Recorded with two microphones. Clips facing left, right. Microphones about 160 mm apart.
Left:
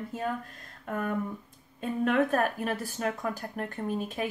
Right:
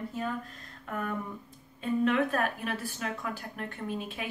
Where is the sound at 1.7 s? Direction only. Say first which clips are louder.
Left 1 dB; 50° left (ahead or behind).